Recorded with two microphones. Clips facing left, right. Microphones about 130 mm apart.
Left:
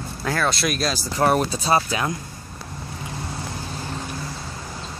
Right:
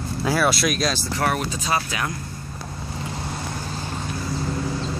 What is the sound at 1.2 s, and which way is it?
Speech, 35° left (ahead or behind).